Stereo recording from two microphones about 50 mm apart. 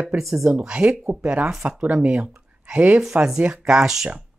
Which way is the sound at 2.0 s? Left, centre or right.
Right.